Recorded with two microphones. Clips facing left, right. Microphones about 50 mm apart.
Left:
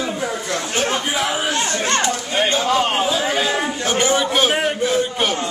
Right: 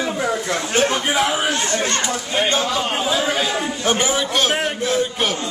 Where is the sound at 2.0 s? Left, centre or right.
Centre.